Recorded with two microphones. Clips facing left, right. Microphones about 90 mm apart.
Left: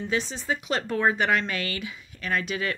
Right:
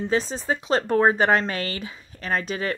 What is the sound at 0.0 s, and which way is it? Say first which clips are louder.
Speech: right 4 dB; 40° right (ahead or behind).